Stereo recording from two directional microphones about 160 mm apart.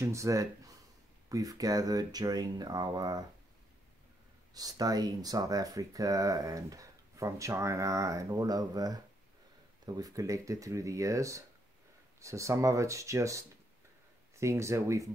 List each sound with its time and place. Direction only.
0.0 s speech: 20° right (ahead or behind)
4.6 s speech: 25° right (ahead or behind)